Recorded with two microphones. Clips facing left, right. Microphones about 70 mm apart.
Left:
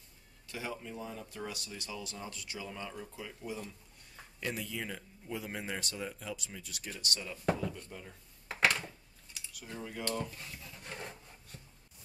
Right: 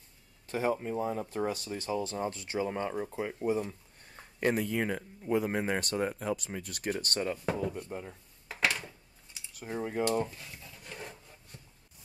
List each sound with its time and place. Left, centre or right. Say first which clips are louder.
0.5 s speech: right 11 dB; right
4.4 s speech: right 10 dB; right
9.5 s speech: right 8 dB; right
10.7 s rub: even; centre